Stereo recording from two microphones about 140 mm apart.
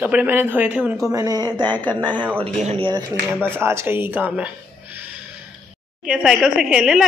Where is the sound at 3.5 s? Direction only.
15° right (ahead or behind).